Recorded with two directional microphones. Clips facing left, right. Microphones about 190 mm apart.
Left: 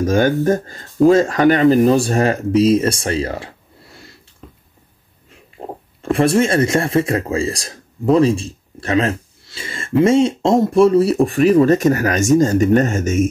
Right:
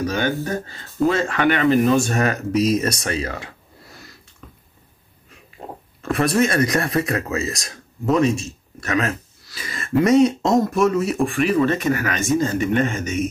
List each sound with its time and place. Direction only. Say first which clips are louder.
0.0 s speech: left 7 dB; 45° left (ahead or behind); by 3.5 s 30° left (ahead or behind)
5.6 s oink: left 5 dB; 30° left (ahead or behind)
6.0 s speech: left 4 dB; 30° left (ahead or behind); by 13.3 s 45° left (ahead or behind)